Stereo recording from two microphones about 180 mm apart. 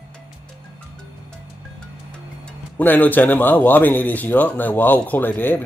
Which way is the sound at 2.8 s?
10° left (ahead or behind).